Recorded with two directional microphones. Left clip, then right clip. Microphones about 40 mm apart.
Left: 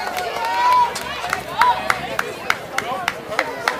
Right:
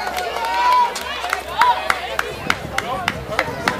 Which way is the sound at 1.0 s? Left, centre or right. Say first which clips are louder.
Right 1 dB; right.